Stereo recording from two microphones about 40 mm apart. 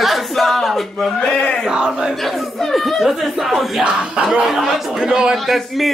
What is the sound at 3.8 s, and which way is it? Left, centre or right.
Speech, right.